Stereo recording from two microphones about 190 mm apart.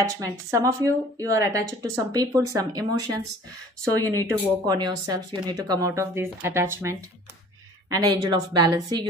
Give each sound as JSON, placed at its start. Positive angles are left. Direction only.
{"t": 0.2, "sound": "a woman's voice", "side_deg": -20}